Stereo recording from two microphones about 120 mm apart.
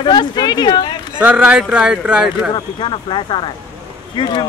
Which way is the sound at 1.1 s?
10° right (ahead or behind).